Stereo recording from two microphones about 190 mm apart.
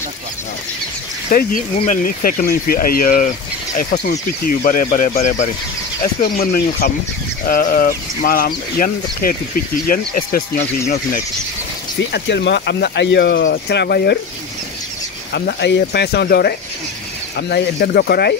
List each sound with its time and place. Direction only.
1.3 s speech: 45° left (ahead or behind)
6.2 s speech: 50° left (ahead or behind)
12.1 s speech: 65° left (ahead or behind)
15.3 s speech: 60° left (ahead or behind)